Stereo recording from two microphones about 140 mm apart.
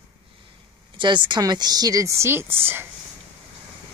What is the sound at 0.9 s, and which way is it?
Speech, 35° right (ahead or behind).